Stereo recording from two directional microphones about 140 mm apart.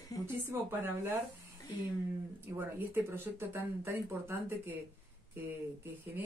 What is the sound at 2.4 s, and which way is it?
Speech, 15° right (ahead or behind).